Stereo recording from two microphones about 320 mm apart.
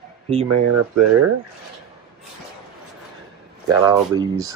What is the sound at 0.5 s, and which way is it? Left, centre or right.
Speech, right.